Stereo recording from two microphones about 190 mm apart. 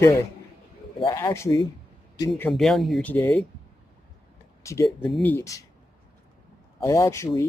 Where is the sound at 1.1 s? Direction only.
15° left (ahead or behind).